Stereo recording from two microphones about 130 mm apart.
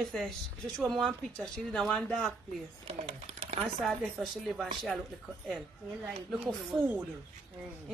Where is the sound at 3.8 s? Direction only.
Centre (ahead or behind).